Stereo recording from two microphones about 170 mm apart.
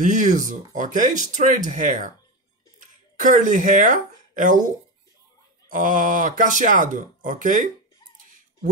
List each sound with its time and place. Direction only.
0.0 s speech: 45° right (ahead or behind)
5.7 s speech: 50° right (ahead or behind)